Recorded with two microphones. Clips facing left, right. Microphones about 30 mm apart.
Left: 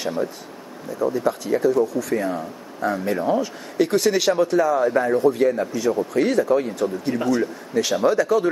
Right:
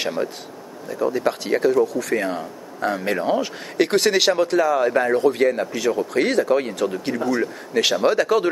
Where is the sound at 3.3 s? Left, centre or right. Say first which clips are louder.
Even; right.